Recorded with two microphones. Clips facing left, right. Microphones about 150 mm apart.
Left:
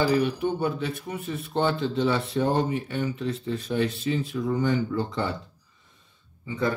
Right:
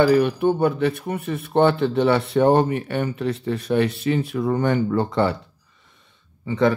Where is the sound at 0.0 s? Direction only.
60° right (ahead or behind).